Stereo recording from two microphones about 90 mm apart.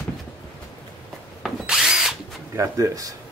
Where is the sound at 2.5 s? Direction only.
40° right (ahead or behind).